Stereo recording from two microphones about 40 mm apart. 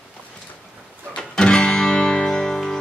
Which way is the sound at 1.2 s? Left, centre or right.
Left.